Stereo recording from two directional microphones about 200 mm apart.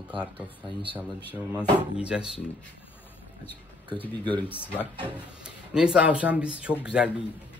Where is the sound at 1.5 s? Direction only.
5° right (ahead or behind).